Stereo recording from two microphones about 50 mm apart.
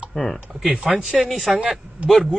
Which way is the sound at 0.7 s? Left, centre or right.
Right.